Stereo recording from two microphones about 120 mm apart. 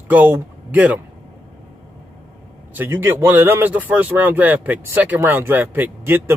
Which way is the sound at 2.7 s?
15° right (ahead or behind).